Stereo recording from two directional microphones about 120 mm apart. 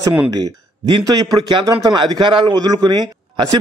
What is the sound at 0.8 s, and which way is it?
A man's voice, 35° right (ahead or behind).